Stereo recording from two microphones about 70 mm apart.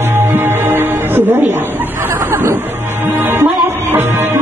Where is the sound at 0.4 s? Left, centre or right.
Right.